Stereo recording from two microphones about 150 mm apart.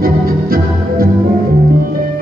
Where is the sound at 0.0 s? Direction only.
80° right.